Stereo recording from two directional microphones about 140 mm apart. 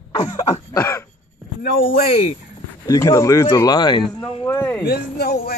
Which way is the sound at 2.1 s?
50° left (ahead or behind).